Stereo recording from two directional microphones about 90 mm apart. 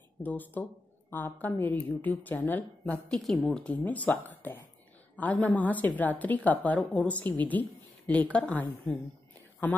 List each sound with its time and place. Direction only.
0.2 s a woman's voice: 20° left (ahead or behind)
3.1 s a woman's voice: 5° left (ahead or behind)